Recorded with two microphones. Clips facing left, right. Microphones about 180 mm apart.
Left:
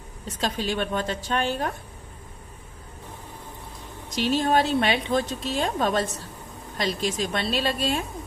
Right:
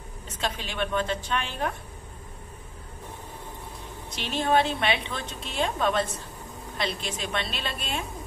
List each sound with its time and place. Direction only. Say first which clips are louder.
0.4 s a woman's voice: left 4 dB; 40° left (ahead or behind)
4.1 s a woman's voice: left 3 dB; 40° left (ahead or behind)